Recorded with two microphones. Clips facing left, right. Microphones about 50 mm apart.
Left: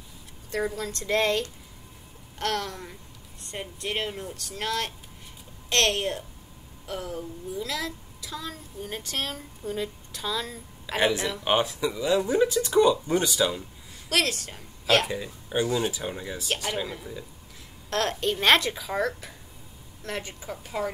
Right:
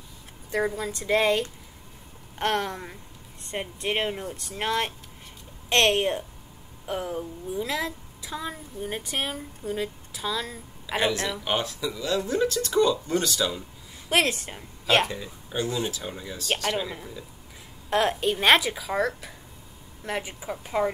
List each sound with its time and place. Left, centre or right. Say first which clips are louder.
0.5 s speech: right 2 dB; centre
2.3 s a woman's voice: right 3 dB; right; by 11.0 s centre
11.0 s speech: left 1 dB; centre
13.6 s speech: even; right
15.0 s speech: left 3 dB; centre
17.8 s speech: right 3 dB; centre